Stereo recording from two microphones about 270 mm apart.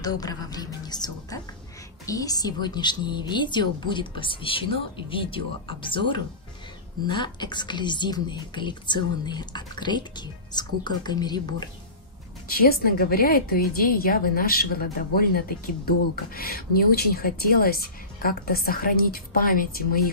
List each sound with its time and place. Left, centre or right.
0.0 s a woman's voice: centre
12.4 s speech: left